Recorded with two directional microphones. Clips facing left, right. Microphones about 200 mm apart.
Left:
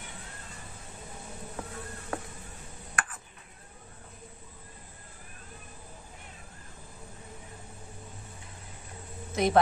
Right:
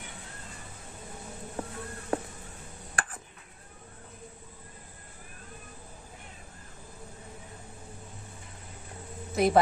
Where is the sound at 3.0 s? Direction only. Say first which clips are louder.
Even; 30° right (ahead or behind).